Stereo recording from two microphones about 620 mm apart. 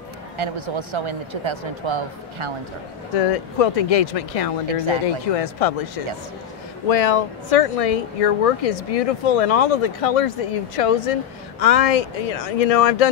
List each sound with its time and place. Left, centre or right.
0.4 s speech: right
3.2 s speech: left
6.9 s speech: left